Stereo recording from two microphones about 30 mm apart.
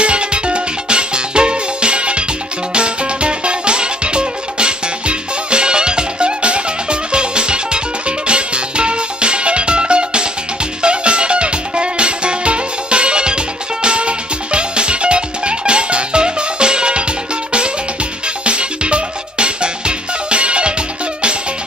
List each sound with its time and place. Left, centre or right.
0.0 s music: right